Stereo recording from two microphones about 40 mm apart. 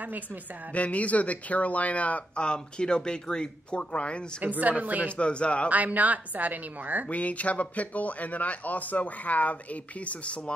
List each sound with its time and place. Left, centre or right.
0.0 s a woman's voice: right
0.7 s speech: left
2.4 s a man's voice: left
4.4 s a woman's voice: right
5.0 s a man's voice: left
5.7 s a woman's voice: right
7.1 s speech: left